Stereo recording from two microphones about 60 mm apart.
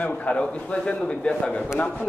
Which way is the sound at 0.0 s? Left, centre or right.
Left.